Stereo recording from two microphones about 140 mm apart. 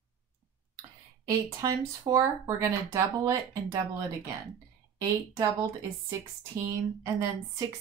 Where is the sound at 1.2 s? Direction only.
25° right (ahead or behind).